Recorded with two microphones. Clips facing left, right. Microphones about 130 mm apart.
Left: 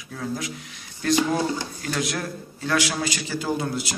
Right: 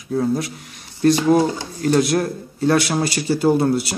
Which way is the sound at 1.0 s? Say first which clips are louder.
Right 7 dB; 35° right (ahead or behind).